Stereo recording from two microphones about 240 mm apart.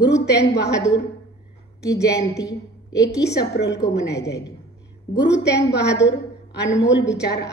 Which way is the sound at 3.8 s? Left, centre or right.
Centre.